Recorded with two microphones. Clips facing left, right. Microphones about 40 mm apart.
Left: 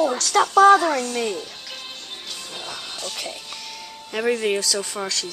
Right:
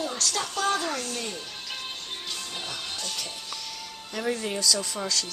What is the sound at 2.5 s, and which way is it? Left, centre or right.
Music, centre.